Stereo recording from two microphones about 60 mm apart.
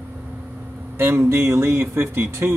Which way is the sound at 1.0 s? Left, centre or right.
Right.